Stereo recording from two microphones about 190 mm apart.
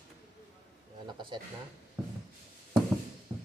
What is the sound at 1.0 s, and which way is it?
Bleat, 25° right (ahead or behind).